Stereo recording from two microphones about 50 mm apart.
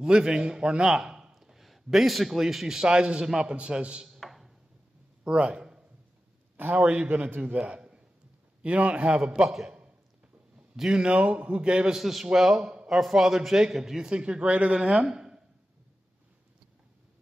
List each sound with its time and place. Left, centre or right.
0.0 s a man's voice: centre
4.2 s a sound: centre
5.2 s speech: centre
6.5 s a man's voice: right
7.5 s a sound: centre
8.6 s speech: right
9.2 s a man's voice: centre
10.9 s speech: centre
12.0 s a man's voice: centre
14.1 s speech: right